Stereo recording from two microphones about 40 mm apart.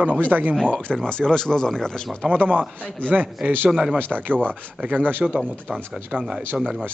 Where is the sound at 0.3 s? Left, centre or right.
Right.